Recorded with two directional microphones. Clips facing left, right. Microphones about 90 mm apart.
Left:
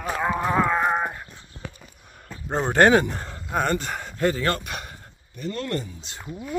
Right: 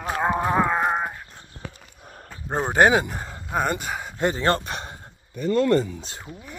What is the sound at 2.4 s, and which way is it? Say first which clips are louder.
Speech: even; 15° right (ahead or behind).